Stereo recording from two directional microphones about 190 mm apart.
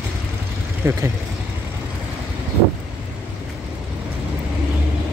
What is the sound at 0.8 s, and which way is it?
Speech, 15° right (ahead or behind).